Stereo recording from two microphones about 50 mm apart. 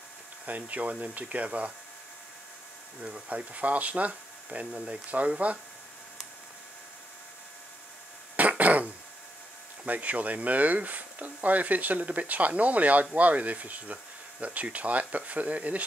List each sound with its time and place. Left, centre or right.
0.5 s speech: right
3.0 s speech: right
8.4 s cough: right
9.8 s speech: right